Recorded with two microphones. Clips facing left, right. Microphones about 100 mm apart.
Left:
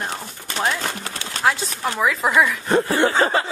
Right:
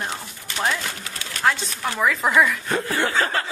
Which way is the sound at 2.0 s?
Centre (ahead or behind).